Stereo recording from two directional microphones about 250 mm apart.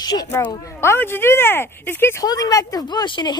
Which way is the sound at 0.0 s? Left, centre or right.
Centre.